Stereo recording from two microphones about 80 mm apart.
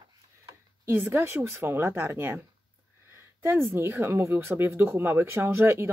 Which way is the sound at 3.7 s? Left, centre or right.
Right.